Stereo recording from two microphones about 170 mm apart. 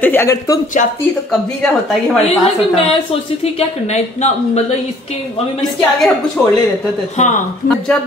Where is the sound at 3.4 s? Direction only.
40° left (ahead or behind).